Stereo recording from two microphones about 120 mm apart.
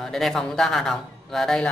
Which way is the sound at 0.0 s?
5° left (ahead or behind).